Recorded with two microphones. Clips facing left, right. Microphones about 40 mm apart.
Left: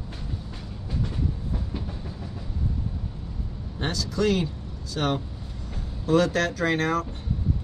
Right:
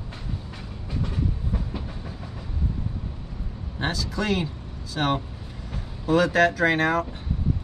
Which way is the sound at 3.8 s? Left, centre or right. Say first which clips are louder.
Left 2 dB; centre.